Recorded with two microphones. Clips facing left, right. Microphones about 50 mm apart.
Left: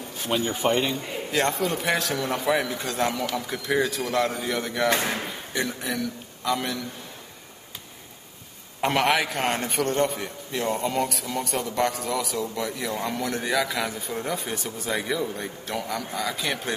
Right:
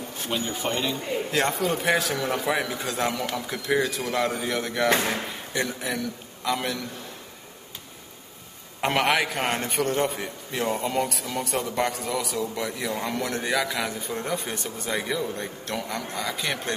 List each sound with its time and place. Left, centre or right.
0.3 s speech: centre
1.3 s a man's voice: centre
8.8 s a man's voice: centre